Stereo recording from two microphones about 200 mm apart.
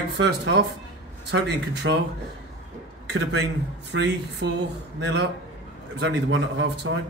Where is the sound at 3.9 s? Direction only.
60° right (ahead or behind).